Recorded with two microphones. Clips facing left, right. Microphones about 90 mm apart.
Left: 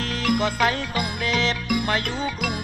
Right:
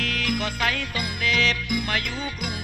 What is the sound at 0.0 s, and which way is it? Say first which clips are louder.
Music: left 4 dB; 35° left (ahead or behind).